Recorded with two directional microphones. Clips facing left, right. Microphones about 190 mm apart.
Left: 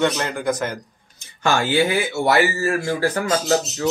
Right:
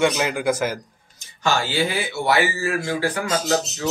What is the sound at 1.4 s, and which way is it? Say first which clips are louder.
Speech: left 3 dB; 55° left (ahead or behind).